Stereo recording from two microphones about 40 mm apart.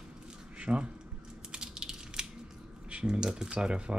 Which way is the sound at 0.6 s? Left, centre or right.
Right.